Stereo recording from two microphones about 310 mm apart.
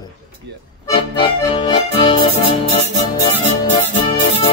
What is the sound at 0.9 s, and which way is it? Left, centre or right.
Accordion, centre.